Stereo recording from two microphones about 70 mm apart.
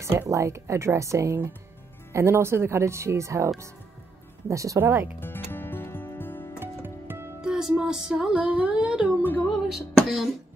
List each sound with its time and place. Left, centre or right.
0.0 s speech: right
4.8 s speech: right
5.2 s music: left
6.6 s music: right
7.4 s music: centre
9.2 s speech: left
9.7 s music: centre